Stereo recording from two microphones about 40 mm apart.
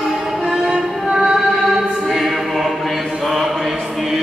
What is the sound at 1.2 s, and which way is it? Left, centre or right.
Choir, centre.